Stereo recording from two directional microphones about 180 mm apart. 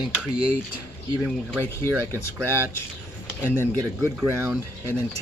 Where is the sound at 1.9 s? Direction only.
15° right (ahead or behind).